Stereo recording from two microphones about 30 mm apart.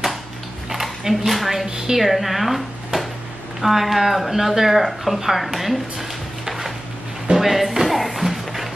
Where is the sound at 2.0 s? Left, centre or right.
Centre.